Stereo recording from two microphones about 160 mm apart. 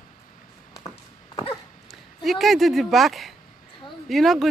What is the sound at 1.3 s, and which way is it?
Dog, 35° left (ahead or behind).